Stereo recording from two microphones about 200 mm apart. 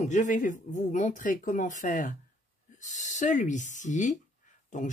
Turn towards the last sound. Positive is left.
turn(degrees=40)  # may be behind; listen again after turning